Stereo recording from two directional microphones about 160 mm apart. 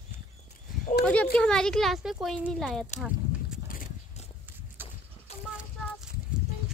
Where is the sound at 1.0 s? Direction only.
10° left (ahead or behind).